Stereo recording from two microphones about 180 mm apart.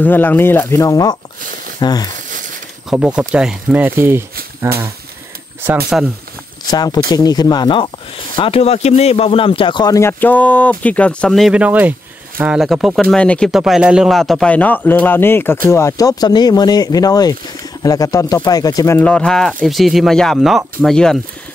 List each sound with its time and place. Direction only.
0.0 s speech: 10° left (ahead or behind)
2.9 s speech: 5° right (ahead or behind)
5.9 s speech: 5° right (ahead or behind)
6.7 s speech: 20° left (ahead or behind); by 21.2 s 5° left (ahead or behind)